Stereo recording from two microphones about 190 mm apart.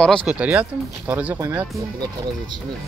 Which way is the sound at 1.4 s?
20° right (ahead or behind).